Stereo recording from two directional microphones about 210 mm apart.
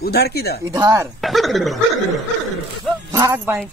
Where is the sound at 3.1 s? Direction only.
15° right (ahead or behind).